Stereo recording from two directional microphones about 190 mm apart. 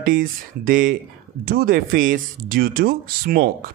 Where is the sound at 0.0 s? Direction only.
45° right (ahead or behind).